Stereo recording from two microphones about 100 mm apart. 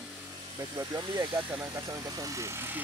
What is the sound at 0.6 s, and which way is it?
Speech, 40° right (ahead or behind).